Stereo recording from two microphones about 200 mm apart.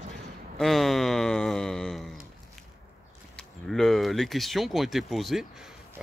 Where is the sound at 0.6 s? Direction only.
Centre (ahead or behind).